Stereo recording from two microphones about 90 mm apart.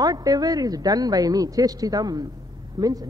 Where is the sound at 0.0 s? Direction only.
45° right (ahead or behind).